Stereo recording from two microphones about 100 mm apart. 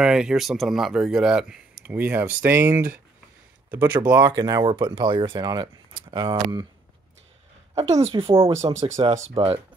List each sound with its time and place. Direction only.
0.0 s speech: 5° right (ahead or behind)
4.3 s speech: 40° right (ahead or behind)
4.6 s speech: 55° right (ahead or behind)
6.2 s speech: 40° right (ahead or behind)
7.7 s a woman's voice: 90° right; by 9.5 s 65° right (ahead or behind)